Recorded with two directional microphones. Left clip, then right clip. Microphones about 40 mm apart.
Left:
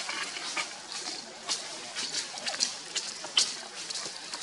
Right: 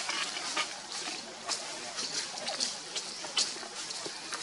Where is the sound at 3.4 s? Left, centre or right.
Left.